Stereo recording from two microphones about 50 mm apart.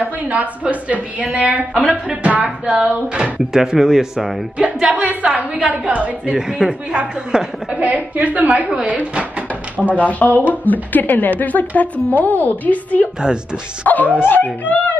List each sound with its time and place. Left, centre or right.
0.0 s a woman's voice: right
1.7 s speech: centre
2.0 s speech: right
3.2 s speech: centre
5.7 s speech: right
6.3 s speech: centre
7.8 s a woman's voice: right
9.9 s a woman's voice: left